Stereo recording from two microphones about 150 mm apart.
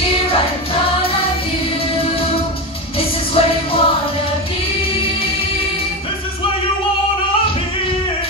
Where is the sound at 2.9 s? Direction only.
40° left (ahead or behind).